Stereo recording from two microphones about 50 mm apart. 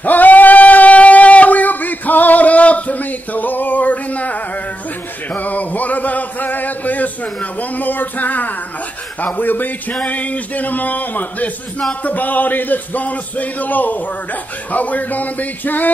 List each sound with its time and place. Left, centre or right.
0.0 s singing: left
5.3 s a sound: left
9.2 s a man's voice: left